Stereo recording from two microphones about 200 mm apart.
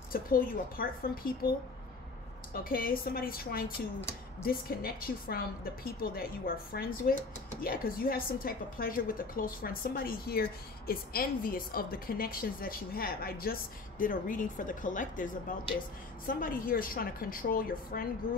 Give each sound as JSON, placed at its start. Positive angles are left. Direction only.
{"t": 0.1, "sound": "a woman's voice", "side_deg": 45}
{"t": 2.5, "sound": "a woman's voice", "side_deg": 45}
{"t": 16.3, "sound": "a woman's voice", "side_deg": 45}